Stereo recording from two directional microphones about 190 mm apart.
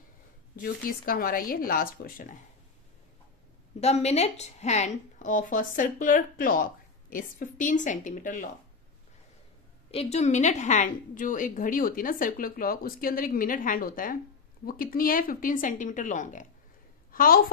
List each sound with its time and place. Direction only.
0.6 s speech: 50° left (ahead or behind)
3.8 s speech: 35° left (ahead or behind)
9.8 s a woman's voice: 35° left (ahead or behind)